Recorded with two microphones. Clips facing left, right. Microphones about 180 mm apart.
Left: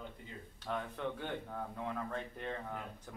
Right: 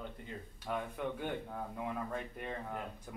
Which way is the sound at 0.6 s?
10° right (ahead or behind).